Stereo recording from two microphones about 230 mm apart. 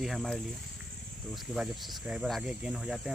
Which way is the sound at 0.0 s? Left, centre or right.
Centre.